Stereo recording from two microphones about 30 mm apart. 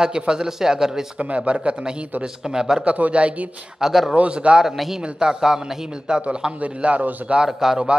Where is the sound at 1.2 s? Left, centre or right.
Right.